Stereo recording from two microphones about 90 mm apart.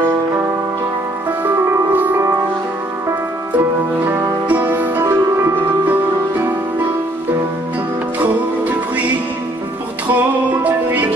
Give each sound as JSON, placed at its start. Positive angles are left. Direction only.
{"t": 1.4, "sound": "music", "side_deg": -20}
{"t": 3.5, "sound": "music", "side_deg": -20}
{"t": 8.2, "sound": "music", "side_deg": -20}